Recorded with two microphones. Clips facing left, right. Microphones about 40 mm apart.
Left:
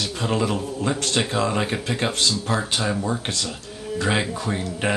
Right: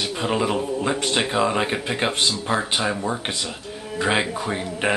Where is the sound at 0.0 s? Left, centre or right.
Centre.